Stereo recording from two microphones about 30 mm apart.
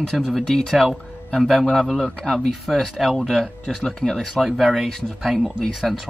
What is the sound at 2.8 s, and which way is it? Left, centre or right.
Speech, centre.